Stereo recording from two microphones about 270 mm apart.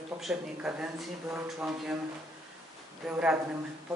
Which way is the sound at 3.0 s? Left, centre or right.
Centre.